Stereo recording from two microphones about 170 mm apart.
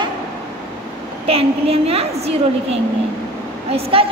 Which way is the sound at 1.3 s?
35° right (ahead or behind).